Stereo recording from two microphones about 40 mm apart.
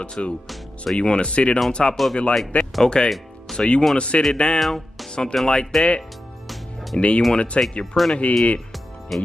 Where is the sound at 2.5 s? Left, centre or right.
Left.